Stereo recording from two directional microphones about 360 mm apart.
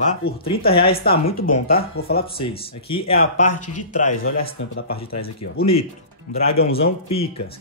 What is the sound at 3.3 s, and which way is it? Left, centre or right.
Speech, left.